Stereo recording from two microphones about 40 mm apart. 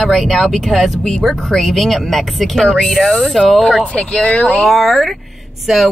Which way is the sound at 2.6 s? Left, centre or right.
Left.